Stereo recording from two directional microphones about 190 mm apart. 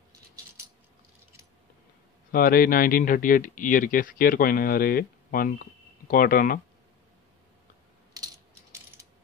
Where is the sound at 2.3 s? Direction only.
50° left (ahead or behind).